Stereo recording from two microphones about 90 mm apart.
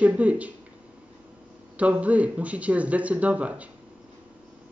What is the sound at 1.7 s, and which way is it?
A woman's voice, 15° right (ahead or behind).